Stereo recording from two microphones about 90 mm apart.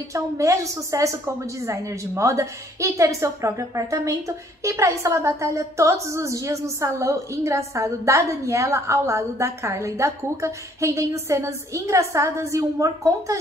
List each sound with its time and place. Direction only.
0.1 s a woman's voice: 35° right (ahead or behind)